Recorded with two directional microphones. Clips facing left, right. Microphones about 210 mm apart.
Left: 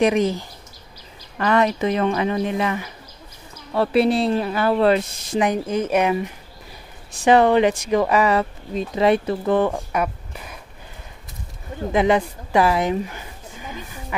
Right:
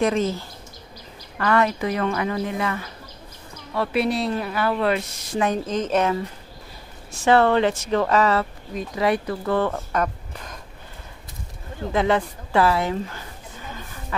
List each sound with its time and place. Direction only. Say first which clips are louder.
0.0 s speech: left 3 dB; 15° left (ahead or behind)
3.7 s speech: left 5 dB; 30° left (ahead or behind)
5.4 s speech: left 2 dB; 10° left (ahead or behind)
11.9 s speech: left 3 dB; 15° left (ahead or behind)